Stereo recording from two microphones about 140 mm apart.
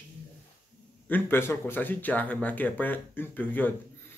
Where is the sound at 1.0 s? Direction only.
15° left (ahead or behind).